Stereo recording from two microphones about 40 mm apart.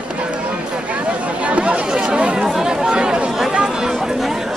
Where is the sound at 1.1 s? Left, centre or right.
Right.